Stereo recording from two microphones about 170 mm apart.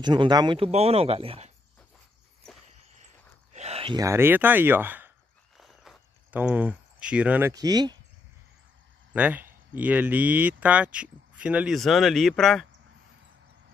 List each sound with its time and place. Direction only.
0.0 s speech: 25° right (ahead or behind)
0.7 s speech: 35° right (ahead or behind)
3.5 s a sound: 40° right (ahead or behind)
4.0 s speech: 15° right (ahead or behind)
5.6 s a sound: 5° right (ahead or behind)
7.5 s speech: 25° right (ahead or behind)
9.1 s speech: 10° right (ahead or behind)